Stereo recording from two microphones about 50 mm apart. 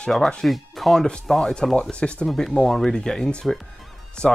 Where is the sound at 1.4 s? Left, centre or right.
Centre.